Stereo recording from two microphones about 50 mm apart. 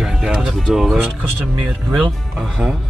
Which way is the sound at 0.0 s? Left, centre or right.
Centre.